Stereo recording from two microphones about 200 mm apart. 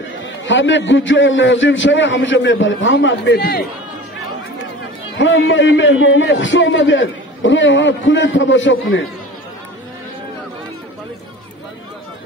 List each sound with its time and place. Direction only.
0.2 s a man's voice: 65° left (ahead or behind); by 3.6 s 50° left (ahead or behind)
5.2 s a man's voice: 65° left (ahead or behind)